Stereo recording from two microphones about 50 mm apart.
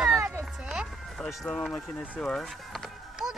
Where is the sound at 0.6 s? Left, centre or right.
Centre.